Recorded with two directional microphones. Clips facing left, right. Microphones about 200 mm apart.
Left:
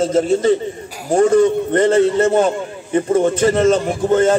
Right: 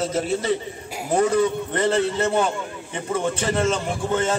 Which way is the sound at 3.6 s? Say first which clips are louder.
Left 9 dB; 45° left (ahead or behind).